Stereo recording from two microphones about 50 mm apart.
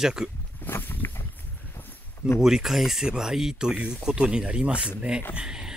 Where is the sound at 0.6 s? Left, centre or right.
Left.